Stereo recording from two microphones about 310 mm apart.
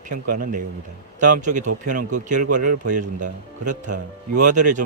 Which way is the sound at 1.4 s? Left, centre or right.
Right.